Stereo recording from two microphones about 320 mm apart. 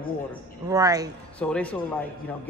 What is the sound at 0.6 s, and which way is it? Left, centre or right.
Speech, centre.